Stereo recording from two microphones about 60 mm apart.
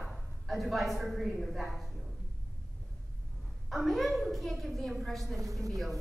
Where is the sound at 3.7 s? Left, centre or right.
Centre.